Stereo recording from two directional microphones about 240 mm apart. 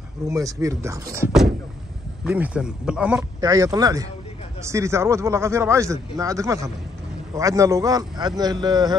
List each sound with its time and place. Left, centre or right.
0.3 s speech: centre
3.3 s speech: centre